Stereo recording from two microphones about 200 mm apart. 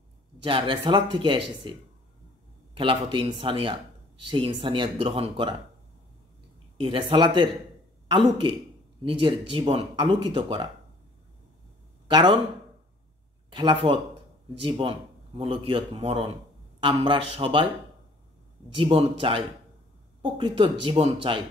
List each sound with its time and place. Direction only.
0.4 s speech: 25° right (ahead or behind)
2.8 s speech: 25° right (ahead or behind)
6.8 s speech: 25° right (ahead or behind)
9.0 s speech: 25° right (ahead or behind)
12.1 s speech: 20° right (ahead or behind)
13.5 s speech: 25° right (ahead or behind)
18.8 s speech: 25° right (ahead or behind)